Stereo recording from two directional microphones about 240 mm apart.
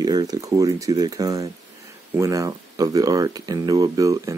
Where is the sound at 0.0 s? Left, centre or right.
Centre.